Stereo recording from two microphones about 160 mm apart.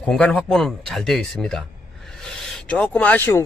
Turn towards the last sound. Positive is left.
turn(degrees=15)  # may be behind; listen again after turning